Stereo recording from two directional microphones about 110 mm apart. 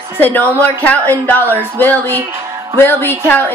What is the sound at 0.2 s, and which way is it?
A woman's voice, 15° left (ahead or behind).